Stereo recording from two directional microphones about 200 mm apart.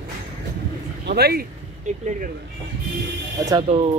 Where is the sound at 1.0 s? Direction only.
50° right (ahead or behind).